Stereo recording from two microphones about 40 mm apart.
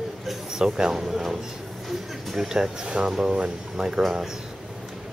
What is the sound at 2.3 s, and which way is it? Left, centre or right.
Speech, centre.